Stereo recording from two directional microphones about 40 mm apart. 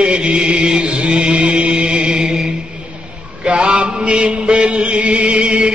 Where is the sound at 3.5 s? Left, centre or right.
Right.